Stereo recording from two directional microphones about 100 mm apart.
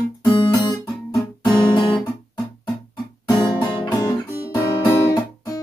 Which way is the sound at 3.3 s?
45° left (ahead or behind).